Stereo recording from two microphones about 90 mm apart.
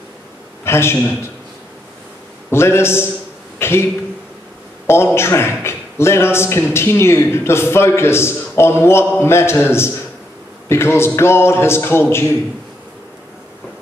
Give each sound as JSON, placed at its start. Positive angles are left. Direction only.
{"t": 0.7, "sound": "a man's voice", "side_deg": 30}
{"t": 2.5, "sound": "a man's voice", "side_deg": 30}
{"t": 3.5, "sound": "a sound", "side_deg": 30}
{"t": 4.8, "sound": "a man's voice", "side_deg": 30}